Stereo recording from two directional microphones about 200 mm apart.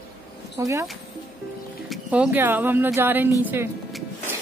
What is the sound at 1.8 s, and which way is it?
Speech, 5° right (ahead or behind).